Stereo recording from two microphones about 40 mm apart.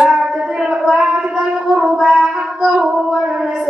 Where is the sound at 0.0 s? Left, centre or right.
Centre.